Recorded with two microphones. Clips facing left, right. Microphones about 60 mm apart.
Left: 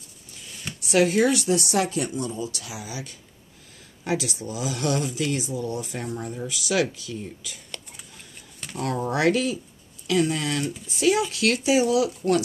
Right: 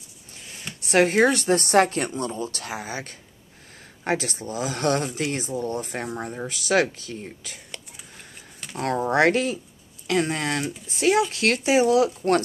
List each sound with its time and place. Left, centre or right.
0.8 s speech: right
8.7 s speech: right